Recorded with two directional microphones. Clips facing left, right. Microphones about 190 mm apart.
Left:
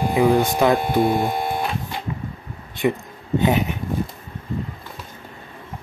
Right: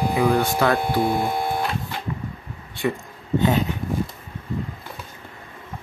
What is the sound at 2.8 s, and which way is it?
Speech, 20° left (ahead or behind).